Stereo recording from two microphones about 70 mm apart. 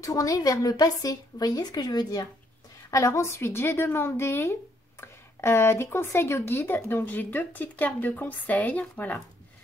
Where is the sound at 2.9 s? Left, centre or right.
Left.